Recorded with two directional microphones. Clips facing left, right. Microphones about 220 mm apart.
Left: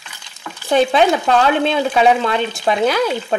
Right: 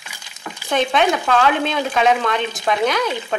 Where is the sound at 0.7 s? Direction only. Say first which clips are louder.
Left 4 dB; 35° left (ahead or behind).